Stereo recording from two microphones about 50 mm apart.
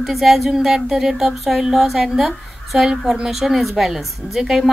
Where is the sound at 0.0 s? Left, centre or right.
Centre.